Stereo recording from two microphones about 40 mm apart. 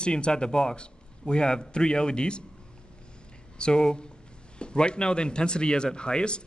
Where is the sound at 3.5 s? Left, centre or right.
Left.